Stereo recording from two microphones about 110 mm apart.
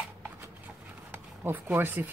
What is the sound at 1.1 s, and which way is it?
Speech, 20° right (ahead or behind).